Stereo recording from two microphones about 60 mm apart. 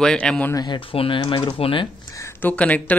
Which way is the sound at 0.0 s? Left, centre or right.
Centre.